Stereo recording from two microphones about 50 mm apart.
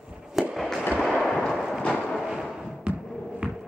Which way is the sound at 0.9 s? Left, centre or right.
Centre.